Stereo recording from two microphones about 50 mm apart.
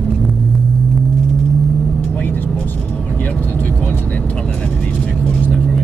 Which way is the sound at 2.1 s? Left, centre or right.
Left.